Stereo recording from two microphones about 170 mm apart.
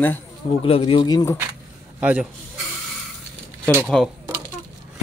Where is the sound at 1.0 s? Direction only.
20° left (ahead or behind).